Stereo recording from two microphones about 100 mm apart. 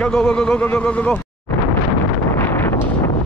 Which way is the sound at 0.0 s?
10° left (ahead or behind).